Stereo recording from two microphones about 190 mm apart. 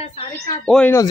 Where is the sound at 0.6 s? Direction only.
5° left (ahead or behind).